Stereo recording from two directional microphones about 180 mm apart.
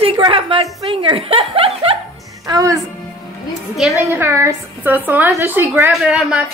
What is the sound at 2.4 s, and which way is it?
Music, 20° right (ahead or behind).